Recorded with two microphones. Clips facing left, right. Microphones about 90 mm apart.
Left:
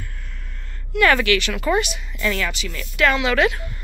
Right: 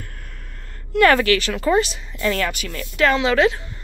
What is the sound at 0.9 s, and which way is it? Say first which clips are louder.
Speech: right 2 dB; 40° right (ahead or behind).